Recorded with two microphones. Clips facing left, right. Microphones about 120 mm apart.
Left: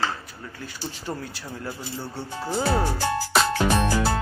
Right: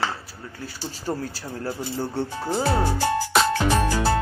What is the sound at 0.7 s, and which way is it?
Speech, 40° right (ahead or behind).